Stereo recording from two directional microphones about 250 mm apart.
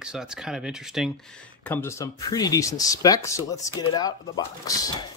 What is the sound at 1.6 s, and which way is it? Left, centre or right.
Speech, centre.